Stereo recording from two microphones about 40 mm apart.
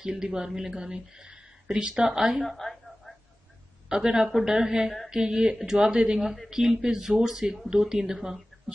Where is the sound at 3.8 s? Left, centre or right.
Centre.